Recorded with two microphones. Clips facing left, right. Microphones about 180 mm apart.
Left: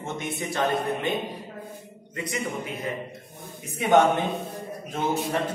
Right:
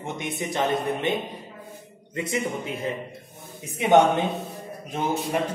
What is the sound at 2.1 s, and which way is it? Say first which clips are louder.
Speech: right 3 dB; 25° right (ahead or behind).